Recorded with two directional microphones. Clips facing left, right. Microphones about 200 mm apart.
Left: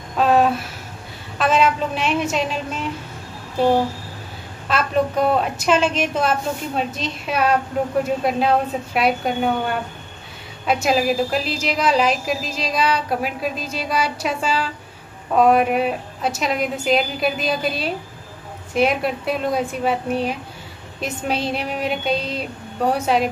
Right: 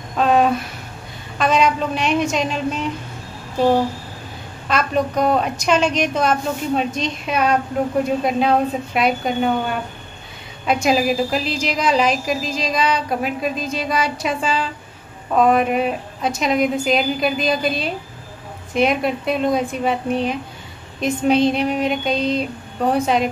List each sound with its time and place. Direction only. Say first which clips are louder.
0.2 s a sound: even; 5° left (ahead or behind)
1.4 s a woman's voice: right 1 dB; 5° left (ahead or behind)
4.6 s a woman's voice: even; 5° left (ahead or behind)